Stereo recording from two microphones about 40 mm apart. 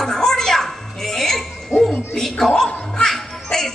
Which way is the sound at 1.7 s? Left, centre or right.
Left.